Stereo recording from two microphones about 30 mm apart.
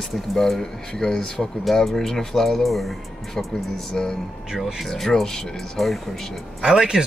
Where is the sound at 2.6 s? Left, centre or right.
Centre.